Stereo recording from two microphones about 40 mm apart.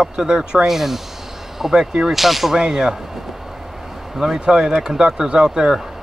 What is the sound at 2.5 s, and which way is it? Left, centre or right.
Speech, centre.